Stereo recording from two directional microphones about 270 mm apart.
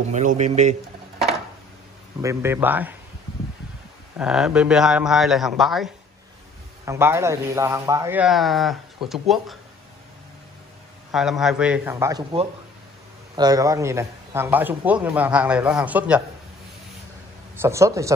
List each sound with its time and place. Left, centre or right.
0.1 s speech: right
2.2 s a man's voice: centre
4.2 s a man's voice: centre
11.1 s a man's voice: centre
17.6 s a man's voice: centre